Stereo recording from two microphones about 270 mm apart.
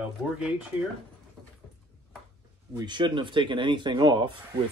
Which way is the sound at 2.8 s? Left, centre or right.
Centre.